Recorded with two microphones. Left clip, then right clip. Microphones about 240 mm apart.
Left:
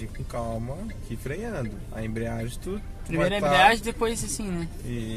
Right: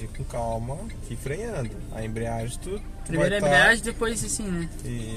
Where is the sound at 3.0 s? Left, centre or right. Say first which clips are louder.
Right 2 dB; centre.